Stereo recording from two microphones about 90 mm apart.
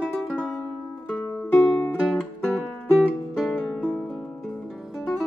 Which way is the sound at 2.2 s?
10° left (ahead or behind).